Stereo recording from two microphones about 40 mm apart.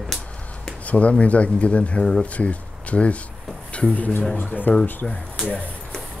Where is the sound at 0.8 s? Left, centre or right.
Left.